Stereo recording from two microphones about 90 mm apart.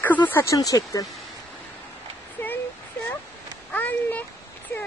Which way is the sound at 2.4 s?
25° left (ahead or behind).